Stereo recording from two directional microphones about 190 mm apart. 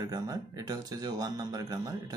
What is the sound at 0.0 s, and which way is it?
Speech, 20° right (ahead or behind).